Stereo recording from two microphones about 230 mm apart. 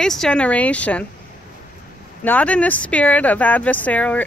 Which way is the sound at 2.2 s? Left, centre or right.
Centre.